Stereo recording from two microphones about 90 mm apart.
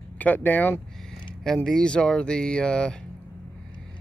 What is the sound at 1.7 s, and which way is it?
Speech, 10° left (ahead or behind).